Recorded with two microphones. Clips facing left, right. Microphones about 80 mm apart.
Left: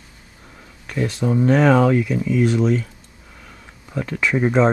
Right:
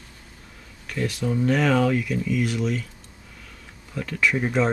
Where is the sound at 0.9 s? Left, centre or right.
Left.